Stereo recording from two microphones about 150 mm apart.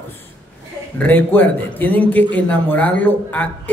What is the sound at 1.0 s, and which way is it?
A man's voice, 10° left (ahead or behind).